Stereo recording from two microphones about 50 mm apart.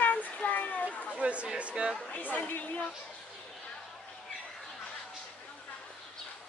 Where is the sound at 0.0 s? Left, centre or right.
Left.